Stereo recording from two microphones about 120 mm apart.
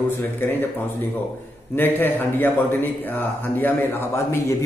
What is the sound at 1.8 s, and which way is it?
A man's voice, 15° left (ahead or behind).